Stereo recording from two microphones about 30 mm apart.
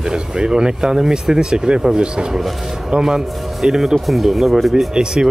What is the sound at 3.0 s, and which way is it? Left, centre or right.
Speech, centre.